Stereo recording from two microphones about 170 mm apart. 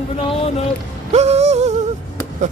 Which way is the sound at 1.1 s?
40° right (ahead or behind).